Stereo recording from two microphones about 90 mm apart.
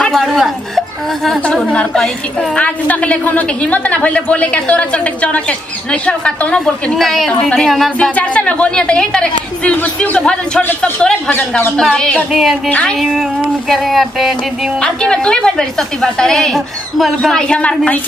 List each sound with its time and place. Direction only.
0.0 s a woman's voice: centre (ahead or behind)
1.4 s a woman's voice: 10° left (ahead or behind)
11.8 s a woman's voice: 5° left (ahead or behind)
12.3 s a sound: centre (ahead or behind)
12.6 s a woman's voice: 15° left (ahead or behind)
13.7 s a sound: centre (ahead or behind)
14.8 s a woman's voice: 10° left (ahead or behind)